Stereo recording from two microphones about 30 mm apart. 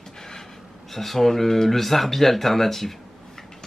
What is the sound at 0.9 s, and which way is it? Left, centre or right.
Speech, centre.